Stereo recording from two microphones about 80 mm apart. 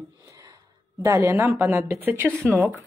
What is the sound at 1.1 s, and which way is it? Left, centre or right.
Speech, right.